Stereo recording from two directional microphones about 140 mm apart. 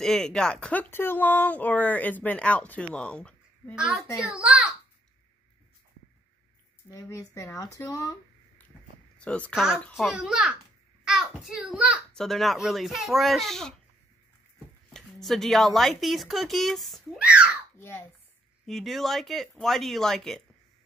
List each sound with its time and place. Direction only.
0.0 s speech: 5° left (ahead or behind)
3.7 s speech: 5° right (ahead or behind)
6.9 s speech: 20° left (ahead or behind)
9.2 s speech: 10° left (ahead or behind)
9.5 s a child's voice: 5° right (ahead or behind)
14.9 s speech: 5° left (ahead or behind)
17.7 s a child's voice: 15° left (ahead or behind)
18.7 s speech: centre (ahead or behind)